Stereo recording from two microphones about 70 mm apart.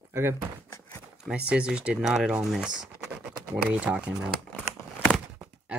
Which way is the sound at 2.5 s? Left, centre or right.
Centre.